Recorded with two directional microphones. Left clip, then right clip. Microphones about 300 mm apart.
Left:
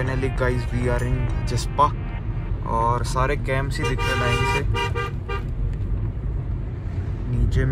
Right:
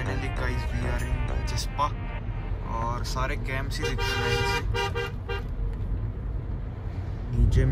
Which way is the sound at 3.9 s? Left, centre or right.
Right.